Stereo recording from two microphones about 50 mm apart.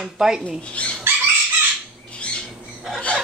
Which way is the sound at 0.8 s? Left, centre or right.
Left.